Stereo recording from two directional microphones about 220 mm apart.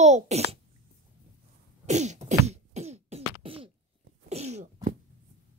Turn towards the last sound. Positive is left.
turn(degrees=-35)  # may be behind; listen again after turning